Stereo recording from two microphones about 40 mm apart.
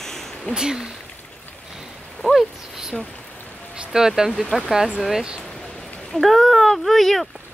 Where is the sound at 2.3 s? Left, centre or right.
Centre.